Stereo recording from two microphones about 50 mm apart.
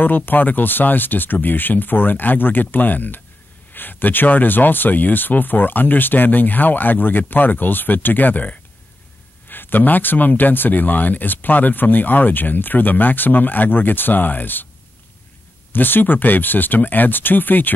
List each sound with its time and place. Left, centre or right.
0.0 s speech: left
15.7 s speech: left